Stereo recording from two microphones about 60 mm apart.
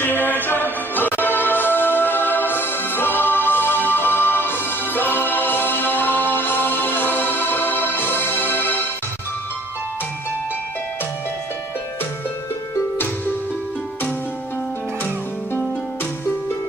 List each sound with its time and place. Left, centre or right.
0.0 s music: left